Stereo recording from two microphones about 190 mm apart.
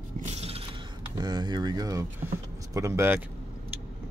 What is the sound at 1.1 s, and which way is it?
Speech, 25° right (ahead or behind).